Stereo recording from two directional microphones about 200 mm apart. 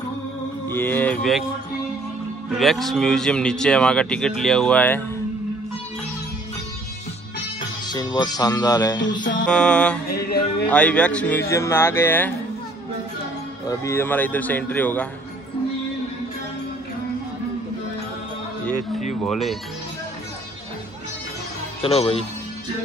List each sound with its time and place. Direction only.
0.7 s speech: 10° left (ahead or behind)
2.5 s speech: centre (ahead or behind)
7.9 s speech: 20° left (ahead or behind)
9.5 s speech: 5° left (ahead or behind)
10.0 s music: 50° left (ahead or behind)
10.7 s speech: 5° left (ahead or behind)
13.7 s speech: 15° left (ahead or behind)
18.8 s speech: 35° left (ahead or behind)
19.2 s speech: centre (ahead or behind)
21.8 s speech: 30° left (ahead or behind)